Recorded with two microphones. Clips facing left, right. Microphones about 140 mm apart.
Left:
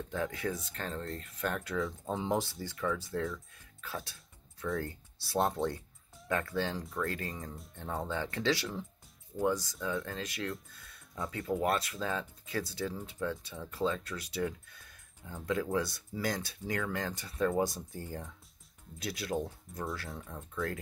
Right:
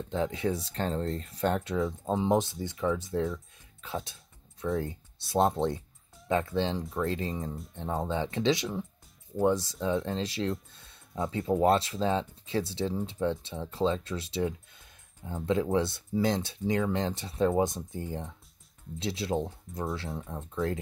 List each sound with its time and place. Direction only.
0.1 s speech: 25° right (ahead or behind)